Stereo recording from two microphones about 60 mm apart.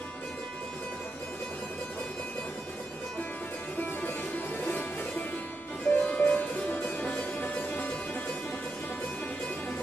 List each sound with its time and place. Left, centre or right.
4.6 s music: left
5.9 s music: left